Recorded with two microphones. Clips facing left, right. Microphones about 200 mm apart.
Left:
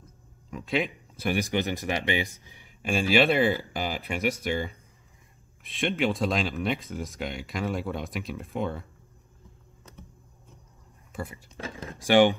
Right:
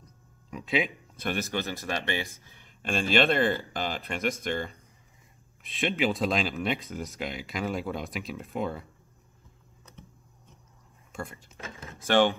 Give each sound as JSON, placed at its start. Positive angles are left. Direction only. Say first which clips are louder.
{"t": 0.5, "sound": "speech", "louder": "left 1 dB", "side_deg": 0}
{"t": 1.2, "sound": "speech", "louder": "left 4 dB", "side_deg": 15}
{"t": 11.1, "sound": "speech", "louder": "left 2 dB", "side_deg": 5}
{"t": 11.5, "sound": "a sound", "louder": "left 5 dB", "side_deg": 35}
{"t": 12.0, "sound": "speech", "louder": "left 3 dB", "side_deg": 15}